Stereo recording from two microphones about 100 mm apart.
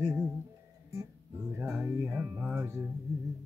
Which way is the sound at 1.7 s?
25° right (ahead or behind).